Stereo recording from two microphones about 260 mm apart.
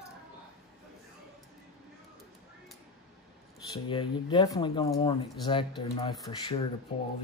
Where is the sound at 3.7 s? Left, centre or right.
Centre.